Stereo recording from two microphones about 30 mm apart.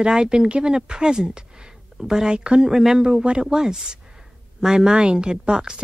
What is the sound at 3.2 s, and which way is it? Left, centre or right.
A woman's voice, right.